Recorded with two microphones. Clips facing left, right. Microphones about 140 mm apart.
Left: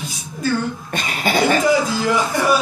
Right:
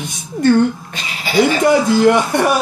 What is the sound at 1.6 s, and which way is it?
Speech, 65° right (ahead or behind).